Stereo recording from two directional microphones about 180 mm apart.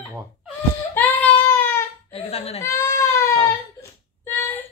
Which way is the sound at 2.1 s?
35° left (ahead or behind).